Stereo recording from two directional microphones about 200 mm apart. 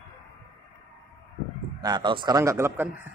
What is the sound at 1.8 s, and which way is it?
Speech, 20° right (ahead or behind).